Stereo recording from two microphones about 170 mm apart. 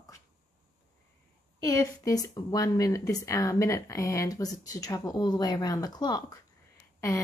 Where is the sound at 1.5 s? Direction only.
20° left (ahead or behind).